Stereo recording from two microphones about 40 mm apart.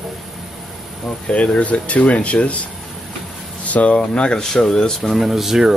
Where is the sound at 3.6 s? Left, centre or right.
Left.